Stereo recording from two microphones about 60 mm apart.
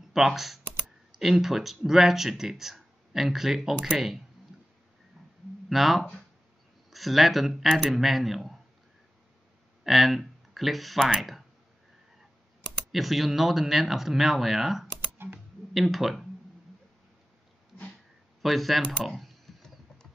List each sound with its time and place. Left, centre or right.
0.1 s speech: centre
5.7 s speech: centre
9.8 s speech: centre
12.9 s speech: centre
15.1 s typing: right
15.7 s speech: centre
18.4 s computer keyboard: centre